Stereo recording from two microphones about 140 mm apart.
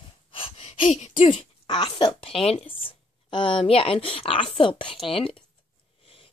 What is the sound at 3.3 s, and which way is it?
A woman's voice, 40° left (ahead or behind).